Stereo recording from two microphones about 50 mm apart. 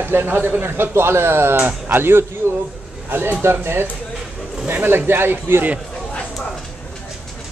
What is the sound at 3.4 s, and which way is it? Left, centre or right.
Speech, right.